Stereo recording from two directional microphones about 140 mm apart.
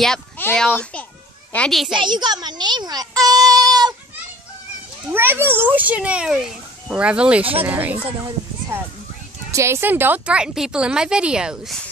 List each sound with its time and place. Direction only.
0.6 s a child's voice: 10° left (ahead or behind)
2.0 s a child's voice: 35° right (ahead or behind)
5.1 s a child's voice: 15° right (ahead or behind)